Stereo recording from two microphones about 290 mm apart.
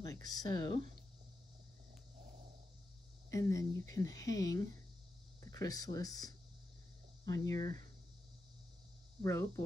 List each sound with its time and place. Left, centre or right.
0.0 s speech: centre
3.3 s speech: centre
9.2 s speech: centre